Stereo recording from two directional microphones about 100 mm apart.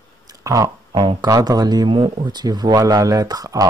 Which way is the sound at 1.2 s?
40° right (ahead or behind).